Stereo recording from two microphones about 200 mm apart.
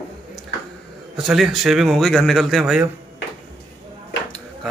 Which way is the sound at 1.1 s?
Centre (ahead or behind).